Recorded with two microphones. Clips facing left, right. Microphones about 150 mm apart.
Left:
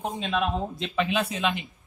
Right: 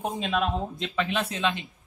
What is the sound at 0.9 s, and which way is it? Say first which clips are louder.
Speech: left 3 dB; 10° left (ahead or behind).